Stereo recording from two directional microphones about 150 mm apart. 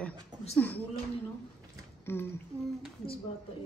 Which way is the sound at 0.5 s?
10° left (ahead or behind).